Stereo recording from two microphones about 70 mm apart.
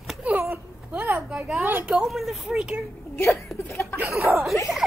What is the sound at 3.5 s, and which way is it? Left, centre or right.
Chuckle, left.